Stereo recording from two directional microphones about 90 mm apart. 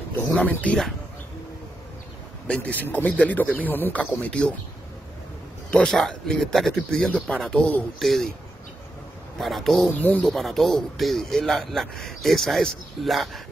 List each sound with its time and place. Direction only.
0.4 s speech: 15° left (ahead or behind)
2.4 s speech: 15° left (ahead or behind)
5.7 s speech: 10° left (ahead or behind)
9.4 s speech: centre (ahead or behind)
9.9 s speech: 20° left (ahead or behind)
10.2 s speech: 5° left (ahead or behind)